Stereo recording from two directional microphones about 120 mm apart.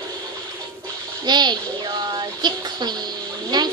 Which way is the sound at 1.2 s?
35° right (ahead or behind).